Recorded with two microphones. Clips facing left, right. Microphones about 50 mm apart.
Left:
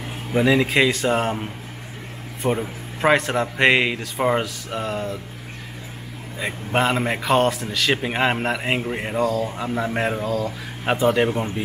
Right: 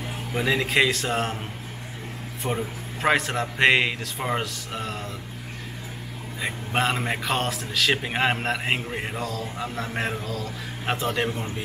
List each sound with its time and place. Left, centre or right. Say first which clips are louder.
0.3 s a man's voice: left 6 dB; centre
6.4 s a man's voice: left 4 dB; centre
11.2 s speech: left 6 dB; centre